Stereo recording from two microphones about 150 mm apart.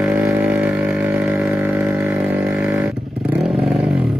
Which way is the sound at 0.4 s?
10° right (ahead or behind).